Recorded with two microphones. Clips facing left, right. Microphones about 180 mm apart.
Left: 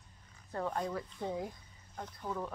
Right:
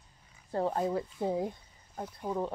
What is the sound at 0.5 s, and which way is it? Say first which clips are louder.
Speech: right 6 dB; 30° right (ahead or behind).